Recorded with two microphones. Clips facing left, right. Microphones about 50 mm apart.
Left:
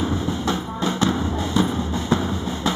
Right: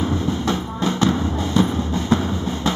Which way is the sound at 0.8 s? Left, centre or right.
Left.